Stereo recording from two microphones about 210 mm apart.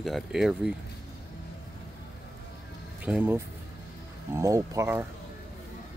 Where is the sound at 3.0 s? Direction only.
10° right (ahead or behind).